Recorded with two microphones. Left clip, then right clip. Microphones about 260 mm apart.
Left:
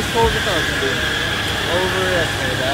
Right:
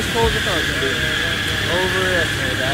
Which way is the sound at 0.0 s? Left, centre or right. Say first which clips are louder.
Left 1 dB; centre.